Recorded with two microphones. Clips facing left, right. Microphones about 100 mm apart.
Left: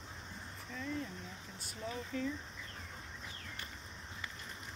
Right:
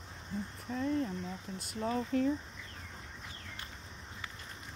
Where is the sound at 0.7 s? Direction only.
45° right (ahead or behind).